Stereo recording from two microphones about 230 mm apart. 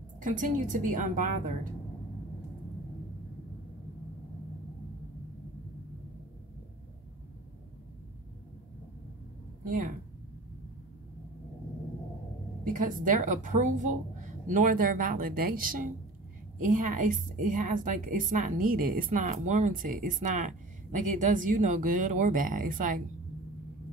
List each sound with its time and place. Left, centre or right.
0.2 s a woman's voice: right
9.7 s speech: right
12.6 s a woman's voice: right